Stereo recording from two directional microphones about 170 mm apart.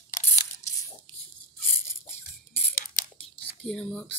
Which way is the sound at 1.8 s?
15° left (ahead or behind).